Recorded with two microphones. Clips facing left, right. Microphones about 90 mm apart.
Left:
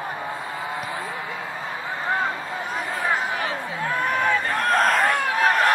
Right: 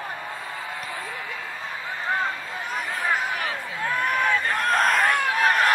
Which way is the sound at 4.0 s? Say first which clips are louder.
Left 1 dB; 25° left (ahead or behind).